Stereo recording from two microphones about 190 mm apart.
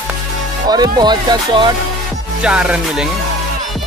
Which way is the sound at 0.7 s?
20° right (ahead or behind).